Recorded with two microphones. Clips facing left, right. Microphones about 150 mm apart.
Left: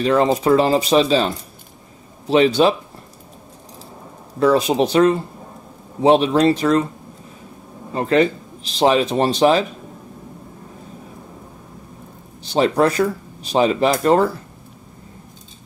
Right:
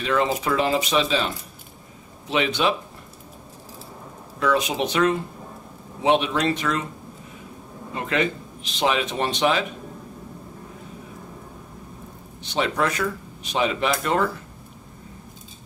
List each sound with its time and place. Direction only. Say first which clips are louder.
0.0 s speech: left 7 dB; 35° left (ahead or behind)
4.4 s speech: left 7 dB; 35° left (ahead or behind)
7.9 s speech: left 8 dB; 35° left (ahead or behind)
12.4 s speech: left 7 dB; 35° left (ahead or behind)